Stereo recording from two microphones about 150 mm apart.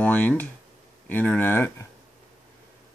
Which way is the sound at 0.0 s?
10° left (ahead or behind).